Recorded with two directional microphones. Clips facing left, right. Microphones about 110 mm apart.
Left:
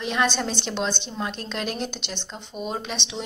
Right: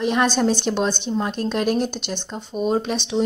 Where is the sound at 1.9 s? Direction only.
5° right (ahead or behind).